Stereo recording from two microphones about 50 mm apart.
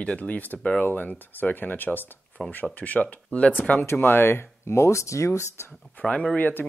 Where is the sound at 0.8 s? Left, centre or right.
Left.